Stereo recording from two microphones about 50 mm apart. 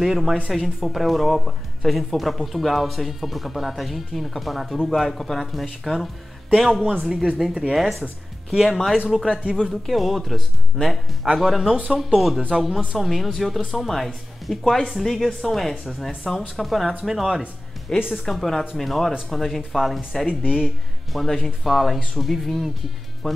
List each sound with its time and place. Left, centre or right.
0.0 s speech: centre
9.2 s speech: centre
9.6 s speech: centre
12.4 s speech: centre
12.9 s speech: centre